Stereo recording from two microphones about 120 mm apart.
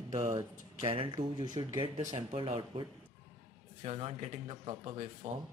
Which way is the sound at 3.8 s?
55° right (ahead or behind).